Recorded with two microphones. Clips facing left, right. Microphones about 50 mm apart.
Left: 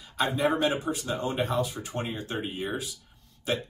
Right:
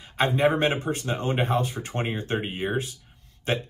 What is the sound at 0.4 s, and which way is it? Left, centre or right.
Speech, right.